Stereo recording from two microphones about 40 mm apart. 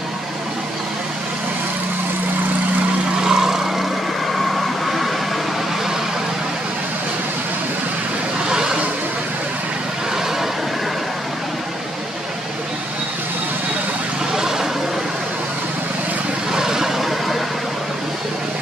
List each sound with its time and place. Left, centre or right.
3.3 s vehicle: centre
4.3 s vehicle: centre
8.5 s vehicle: centre
14.3 s vehicle: centre
16.5 s vehicle: centre